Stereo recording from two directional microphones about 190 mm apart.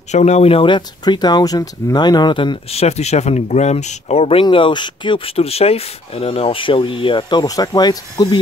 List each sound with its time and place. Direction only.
0.1 s speech: 35° left (ahead or behind)